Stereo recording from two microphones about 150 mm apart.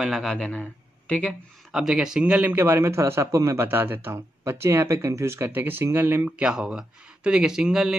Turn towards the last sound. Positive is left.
turn(degrees=-5)  # may be behind; listen again after turning